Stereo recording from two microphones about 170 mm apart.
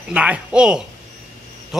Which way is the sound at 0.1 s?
5° right (ahead or behind).